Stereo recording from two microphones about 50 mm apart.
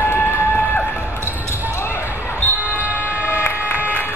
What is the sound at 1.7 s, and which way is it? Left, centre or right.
Basketball bounce, left.